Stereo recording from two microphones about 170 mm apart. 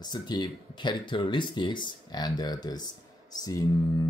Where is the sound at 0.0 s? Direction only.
25° left (ahead or behind).